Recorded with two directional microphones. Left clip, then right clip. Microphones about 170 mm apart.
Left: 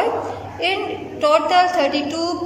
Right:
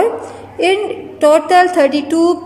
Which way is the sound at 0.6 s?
35° right (ahead or behind).